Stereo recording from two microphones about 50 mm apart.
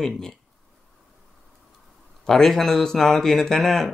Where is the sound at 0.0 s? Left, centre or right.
Centre.